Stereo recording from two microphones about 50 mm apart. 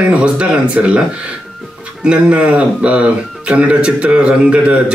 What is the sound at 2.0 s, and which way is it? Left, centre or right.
Speech, right.